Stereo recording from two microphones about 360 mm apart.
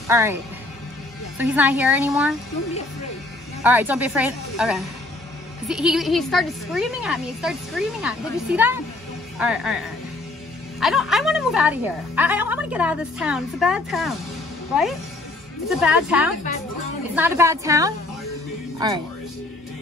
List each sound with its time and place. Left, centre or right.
0.1 s a woman's voice: centre
1.4 s a woman's voice: centre
3.6 s a woman's voice: centre
10.8 s a woman's voice: centre